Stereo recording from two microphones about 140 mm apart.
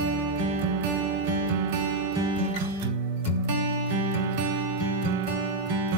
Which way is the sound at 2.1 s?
30° right (ahead or behind).